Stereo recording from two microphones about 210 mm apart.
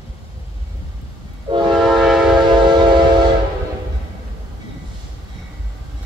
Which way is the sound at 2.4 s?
20° right (ahead or behind).